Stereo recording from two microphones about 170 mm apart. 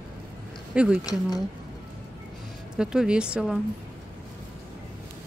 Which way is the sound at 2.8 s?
5° right (ahead or behind).